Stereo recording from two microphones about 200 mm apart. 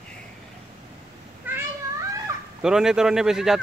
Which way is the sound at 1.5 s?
10° right (ahead or behind).